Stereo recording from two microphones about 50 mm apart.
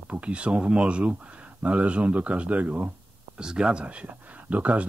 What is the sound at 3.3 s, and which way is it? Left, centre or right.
Speech, centre.